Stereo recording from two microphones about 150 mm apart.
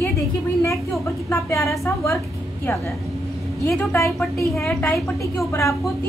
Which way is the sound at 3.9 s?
20° left (ahead or behind).